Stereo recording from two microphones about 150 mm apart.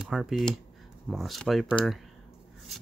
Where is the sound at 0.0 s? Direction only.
5° right (ahead or behind).